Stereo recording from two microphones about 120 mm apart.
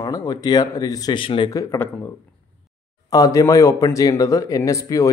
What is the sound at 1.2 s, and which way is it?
Speech, 45° left (ahead or behind).